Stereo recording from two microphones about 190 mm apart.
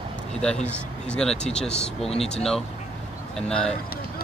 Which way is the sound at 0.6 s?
5° left (ahead or behind).